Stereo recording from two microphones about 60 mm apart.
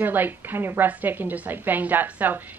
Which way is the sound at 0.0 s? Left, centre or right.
Right.